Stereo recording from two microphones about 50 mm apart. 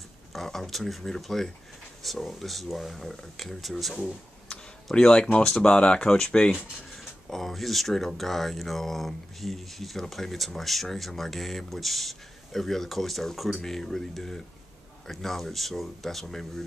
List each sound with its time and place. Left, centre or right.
0.3 s speech: centre
4.9 s speech: centre